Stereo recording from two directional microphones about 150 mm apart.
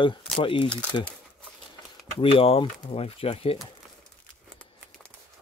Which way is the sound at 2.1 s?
40° left (ahead or behind).